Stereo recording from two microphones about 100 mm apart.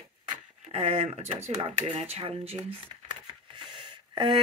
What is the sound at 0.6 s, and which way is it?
Speech, 90° right.